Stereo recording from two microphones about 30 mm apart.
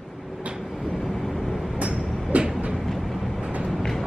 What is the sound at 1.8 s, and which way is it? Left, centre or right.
Vehicle, right.